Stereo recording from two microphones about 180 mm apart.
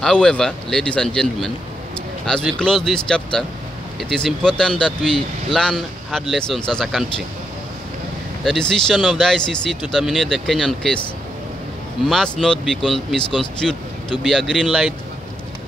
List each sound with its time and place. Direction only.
0.0 s speech: 5° left (ahead or behind)
8.5 s speech: 5° left (ahead or behind)
12.1 s speech: 5° left (ahead or behind)